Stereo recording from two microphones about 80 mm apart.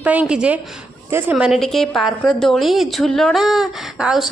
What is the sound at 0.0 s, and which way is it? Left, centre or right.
A woman's voice, centre.